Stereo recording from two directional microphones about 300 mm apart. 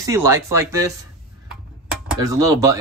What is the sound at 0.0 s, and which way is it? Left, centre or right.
Speech, centre.